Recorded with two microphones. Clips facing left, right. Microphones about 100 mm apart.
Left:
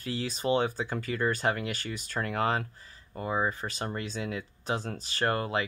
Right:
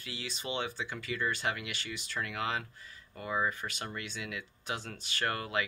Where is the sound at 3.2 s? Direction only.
30° left (ahead or behind).